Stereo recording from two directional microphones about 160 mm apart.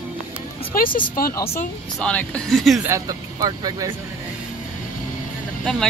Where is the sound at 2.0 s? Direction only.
10° left (ahead or behind).